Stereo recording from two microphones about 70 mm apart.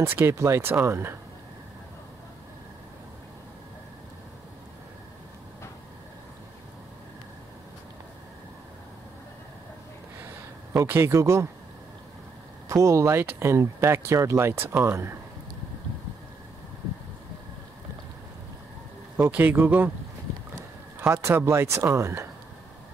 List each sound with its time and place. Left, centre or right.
0.0 s speech: right
10.7 s speech: right
12.6 s speech: right
19.3 s speech: right
21.1 s speech: right